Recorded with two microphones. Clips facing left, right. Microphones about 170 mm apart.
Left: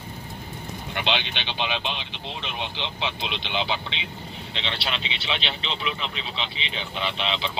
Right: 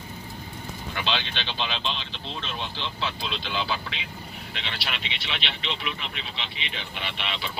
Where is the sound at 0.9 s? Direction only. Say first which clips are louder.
Left 2 dB; 20° left (ahead or behind).